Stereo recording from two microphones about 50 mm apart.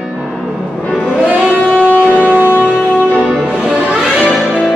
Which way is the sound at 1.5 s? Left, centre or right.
Left.